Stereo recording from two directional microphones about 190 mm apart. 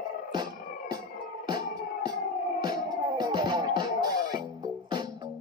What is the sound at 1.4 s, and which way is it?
Music, 20° right (ahead or behind).